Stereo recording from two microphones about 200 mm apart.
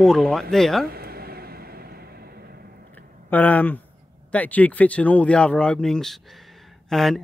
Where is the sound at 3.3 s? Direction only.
10° left (ahead or behind).